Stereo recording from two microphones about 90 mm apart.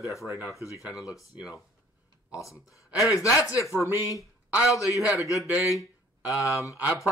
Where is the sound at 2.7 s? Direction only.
35° left (ahead or behind).